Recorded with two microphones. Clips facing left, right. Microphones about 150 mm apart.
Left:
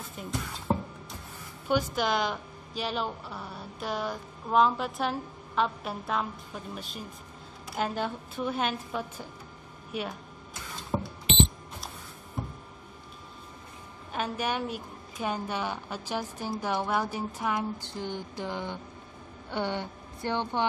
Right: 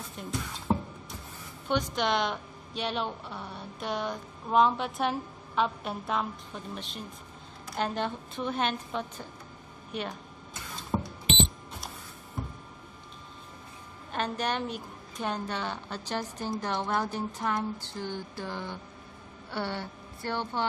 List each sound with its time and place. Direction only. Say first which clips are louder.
0.2 s a woman's voice: even; 5° left (ahead or behind)
1.7 s a woman's voice: left 1 dB; 5° left (ahead or behind)
10.9 s music: even; centre (ahead or behind)
14.1 s a woman's voice: even; 10° left (ahead or behind)